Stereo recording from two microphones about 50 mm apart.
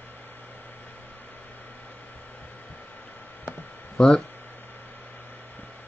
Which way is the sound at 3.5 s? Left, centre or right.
Centre.